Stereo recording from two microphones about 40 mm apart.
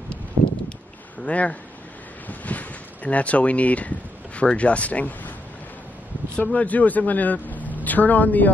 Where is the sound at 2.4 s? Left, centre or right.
Left.